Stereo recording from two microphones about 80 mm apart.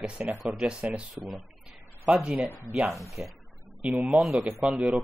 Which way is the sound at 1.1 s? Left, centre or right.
Centre.